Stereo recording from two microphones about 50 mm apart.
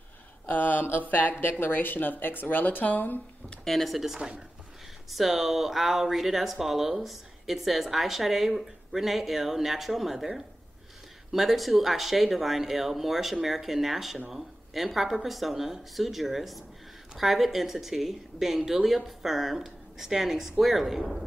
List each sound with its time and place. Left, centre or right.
0.5 s a sound: left
1.0 s speech: left
3.6 s speech: centre